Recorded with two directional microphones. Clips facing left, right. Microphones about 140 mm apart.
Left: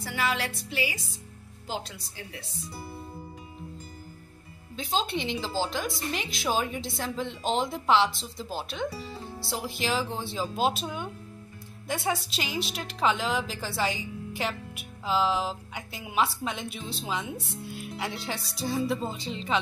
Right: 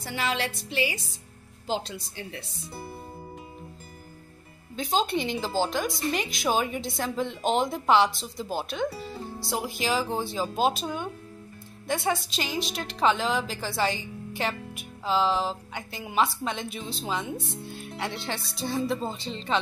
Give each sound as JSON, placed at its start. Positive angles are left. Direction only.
{"t": 0.0, "sound": "music", "side_deg": -25}
{"t": 4.7, "sound": "a woman's voice", "side_deg": 0}